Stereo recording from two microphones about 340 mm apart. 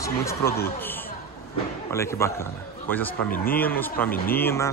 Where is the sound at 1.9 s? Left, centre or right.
Centre.